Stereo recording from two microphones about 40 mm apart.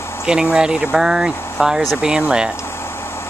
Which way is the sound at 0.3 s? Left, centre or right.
Centre.